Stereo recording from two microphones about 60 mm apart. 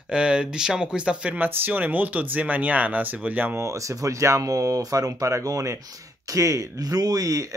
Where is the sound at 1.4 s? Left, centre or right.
Right.